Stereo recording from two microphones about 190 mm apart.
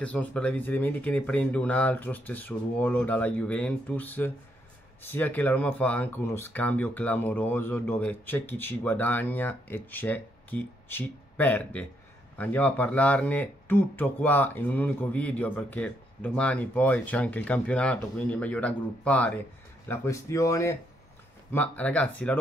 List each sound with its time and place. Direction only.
0.0 s speech: 5° left (ahead or behind)